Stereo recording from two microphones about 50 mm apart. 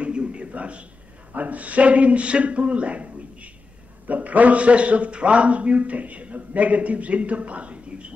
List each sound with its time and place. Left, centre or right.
0.0 s a sound: right
1.3 s a man's voice: right
4.1 s a man's voice: right